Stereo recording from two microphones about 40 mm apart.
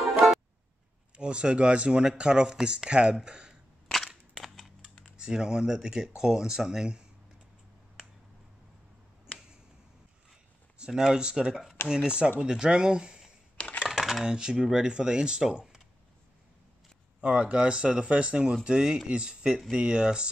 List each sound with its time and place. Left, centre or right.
1.1 s speech: right
4.4 s a sound: centre
5.1 s speech: centre
10.9 s speech: centre
13.8 s computer keyboard: centre
14.2 s speech: centre
17.2 s speech: right